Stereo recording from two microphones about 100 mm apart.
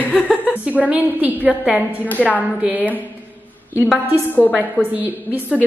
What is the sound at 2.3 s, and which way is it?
Speech, 15° right (ahead or behind).